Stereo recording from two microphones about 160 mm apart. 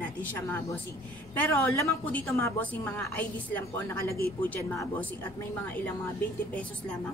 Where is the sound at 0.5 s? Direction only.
15° left (ahead or behind).